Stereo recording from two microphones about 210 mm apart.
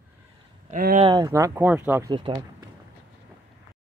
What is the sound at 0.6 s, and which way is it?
Speech, 40° right (ahead or behind).